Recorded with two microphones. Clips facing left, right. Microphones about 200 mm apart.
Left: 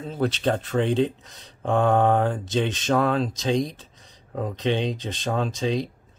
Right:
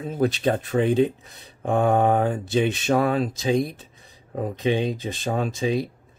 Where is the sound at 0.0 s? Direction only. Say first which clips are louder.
Right 2 dB; 10° right (ahead or behind).